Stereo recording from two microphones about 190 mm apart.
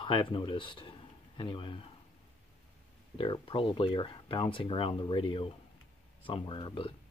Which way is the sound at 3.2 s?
25° left (ahead or behind).